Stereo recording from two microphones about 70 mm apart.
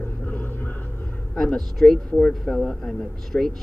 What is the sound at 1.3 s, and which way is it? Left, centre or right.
Speech, centre.